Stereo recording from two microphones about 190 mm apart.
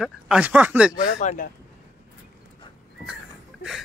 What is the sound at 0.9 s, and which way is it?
Speech, 45° left (ahead or behind).